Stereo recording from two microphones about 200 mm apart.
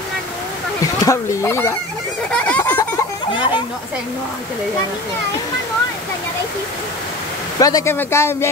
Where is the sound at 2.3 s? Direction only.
5° left (ahead or behind).